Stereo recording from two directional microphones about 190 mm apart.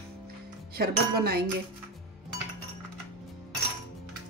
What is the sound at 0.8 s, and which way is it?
Speech, 55° right (ahead or behind).